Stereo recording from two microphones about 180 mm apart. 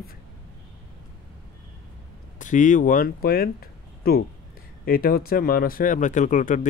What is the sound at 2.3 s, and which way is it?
Speech, 45° left (ahead or behind).